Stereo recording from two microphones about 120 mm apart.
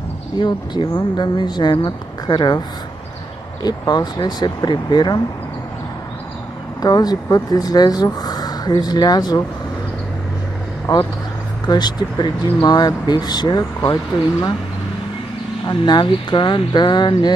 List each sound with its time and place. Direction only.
0.4 s speech: 40° left (ahead or behind)
3.6 s speech: 35° left (ahead or behind)
6.8 s speech: 30° left (ahead or behind)
10.9 s speech: 35° left (ahead or behind)
15.6 s speech: 40° left (ahead or behind)